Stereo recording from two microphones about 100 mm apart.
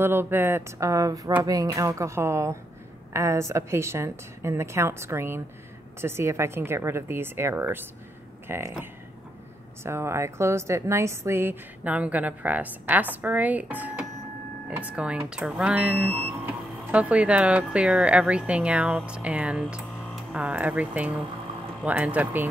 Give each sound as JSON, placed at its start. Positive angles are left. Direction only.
{"t": 0.0, "sound": "a woman's voice", "side_deg": -20}
{"t": 9.8, "sound": "a woman's voice", "side_deg": -25}